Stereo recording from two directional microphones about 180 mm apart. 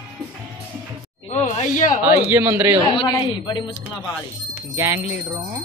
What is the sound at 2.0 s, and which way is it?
Speech, 10° right (ahead or behind).